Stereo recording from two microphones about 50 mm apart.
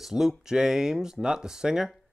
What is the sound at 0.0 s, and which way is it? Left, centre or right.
Speech, centre.